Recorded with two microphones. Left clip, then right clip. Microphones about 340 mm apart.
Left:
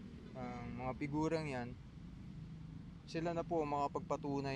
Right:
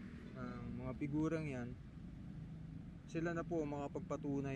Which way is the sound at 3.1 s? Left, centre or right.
Centre.